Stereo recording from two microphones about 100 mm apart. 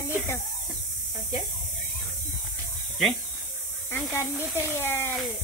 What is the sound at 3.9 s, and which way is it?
Speech, 25° left (ahead or behind).